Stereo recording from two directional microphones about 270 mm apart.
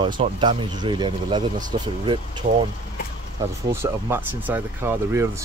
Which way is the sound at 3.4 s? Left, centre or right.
Centre.